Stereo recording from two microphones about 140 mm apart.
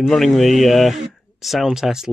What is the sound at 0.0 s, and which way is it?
Speech, centre (ahead or behind).